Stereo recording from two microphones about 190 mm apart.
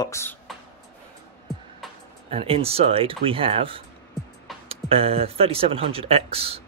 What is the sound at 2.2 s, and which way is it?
Speech, 30° right (ahead or behind).